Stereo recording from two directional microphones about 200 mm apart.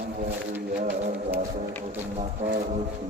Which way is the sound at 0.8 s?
35° right (ahead or behind).